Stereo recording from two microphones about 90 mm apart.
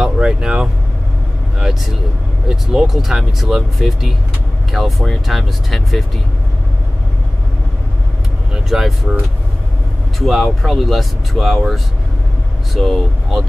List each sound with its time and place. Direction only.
0.0 s vehicle: 10° right (ahead or behind)
2.4 s speech: 10° right (ahead or behind)
8.6 s speech: 5° right (ahead or behind)
10.1 s speech: centre (ahead or behind)